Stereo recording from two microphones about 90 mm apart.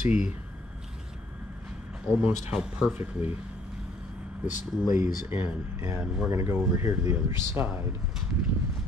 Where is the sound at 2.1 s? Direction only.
10° right (ahead or behind).